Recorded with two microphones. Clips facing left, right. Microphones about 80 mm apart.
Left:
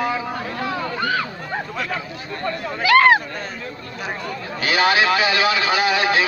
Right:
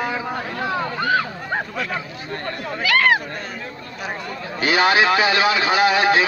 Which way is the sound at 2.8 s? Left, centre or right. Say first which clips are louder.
Left 5 dB; left.